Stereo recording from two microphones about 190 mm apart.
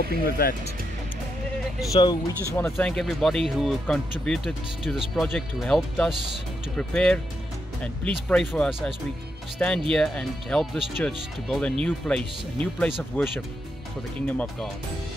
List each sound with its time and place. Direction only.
0.1 s speech: 50° left (ahead or behind)
1.9 s speech: 20° left (ahead or behind); by 14.7 s 5° left (ahead or behind)